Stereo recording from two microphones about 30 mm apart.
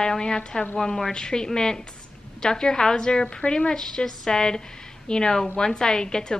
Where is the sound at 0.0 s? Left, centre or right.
Left.